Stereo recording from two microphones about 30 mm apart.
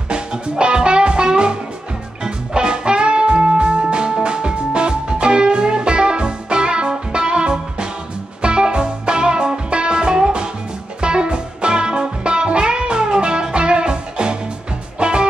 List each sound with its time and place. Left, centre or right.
0.1 s music: right